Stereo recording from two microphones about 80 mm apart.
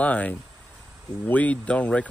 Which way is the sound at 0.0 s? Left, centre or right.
Centre.